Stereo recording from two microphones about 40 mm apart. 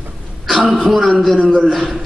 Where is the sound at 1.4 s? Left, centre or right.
Centre.